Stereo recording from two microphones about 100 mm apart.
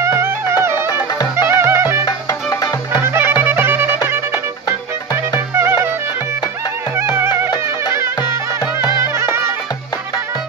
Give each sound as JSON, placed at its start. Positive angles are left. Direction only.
{"t": 0.0, "sound": "music", "side_deg": -30}
{"t": 1.3, "sound": "clarinet", "side_deg": -25}
{"t": 2.0, "sound": "music", "side_deg": 40}
{"t": 3.0, "sound": "music", "side_deg": -25}
{"t": 5.5, "sound": "clarinet", "side_deg": -25}
{"t": 7.0, "sound": "music", "side_deg": -25}
{"t": 8.9, "sound": "music", "side_deg": -25}